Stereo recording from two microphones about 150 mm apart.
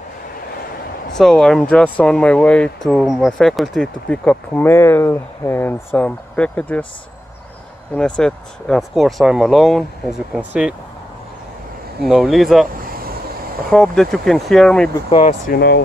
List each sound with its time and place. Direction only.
1.1 s speech: 5° left (ahead or behind)
7.9 s speech: 5° left (ahead or behind)
12.0 s speech: centre (ahead or behind)
13.7 s speech: 5° left (ahead or behind)
15.0 s speech: 40° left (ahead or behind)
15.4 s speech: 85° left